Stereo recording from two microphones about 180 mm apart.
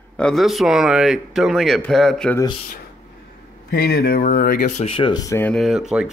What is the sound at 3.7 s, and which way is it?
Speech, 55° left (ahead or behind).